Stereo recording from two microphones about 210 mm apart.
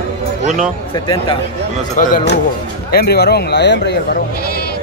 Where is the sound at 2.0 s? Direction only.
40° left (ahead or behind).